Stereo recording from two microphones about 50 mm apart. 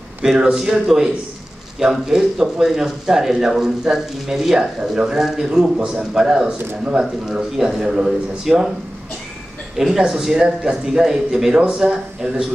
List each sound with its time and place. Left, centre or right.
0.4 s speech: centre
9.8 s speech: centre
10.4 s speech: centre